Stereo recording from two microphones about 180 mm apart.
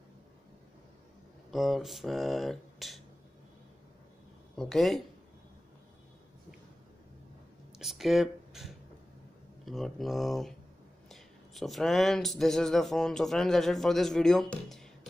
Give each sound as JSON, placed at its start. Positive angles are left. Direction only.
{"t": 1.5, "sound": "speech", "side_deg": 0}
{"t": 4.6, "sound": "speech", "side_deg": 0}
{"t": 7.8, "sound": "speech", "side_deg": 0}